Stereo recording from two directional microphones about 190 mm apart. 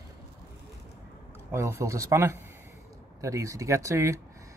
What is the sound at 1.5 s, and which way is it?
Speech, 15° right (ahead or behind).